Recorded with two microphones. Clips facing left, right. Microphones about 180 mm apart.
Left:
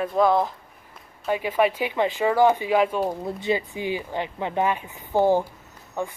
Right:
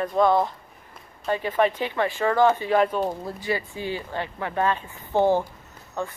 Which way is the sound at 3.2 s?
25° left (ahead or behind).